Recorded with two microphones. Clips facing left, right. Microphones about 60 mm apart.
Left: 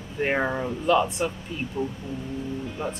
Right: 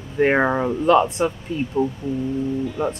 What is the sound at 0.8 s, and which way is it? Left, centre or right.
Speech, right.